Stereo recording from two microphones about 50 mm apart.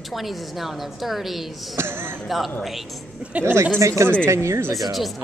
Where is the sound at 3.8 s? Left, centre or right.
Right.